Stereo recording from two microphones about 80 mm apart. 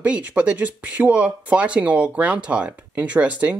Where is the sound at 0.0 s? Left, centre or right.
Centre.